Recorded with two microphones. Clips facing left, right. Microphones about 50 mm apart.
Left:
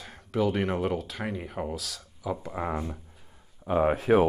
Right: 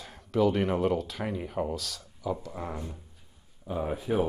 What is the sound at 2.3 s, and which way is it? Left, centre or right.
Speech, left.